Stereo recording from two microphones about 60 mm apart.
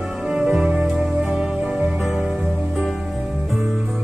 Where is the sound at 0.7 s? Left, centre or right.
Centre.